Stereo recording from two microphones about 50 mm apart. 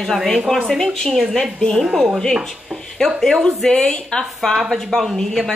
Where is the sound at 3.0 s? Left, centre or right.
Centre.